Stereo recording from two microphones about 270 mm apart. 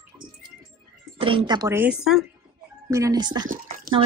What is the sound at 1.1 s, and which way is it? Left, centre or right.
Speech, centre.